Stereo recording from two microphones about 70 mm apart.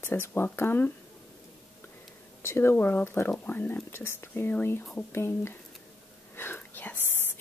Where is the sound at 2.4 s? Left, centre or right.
Left.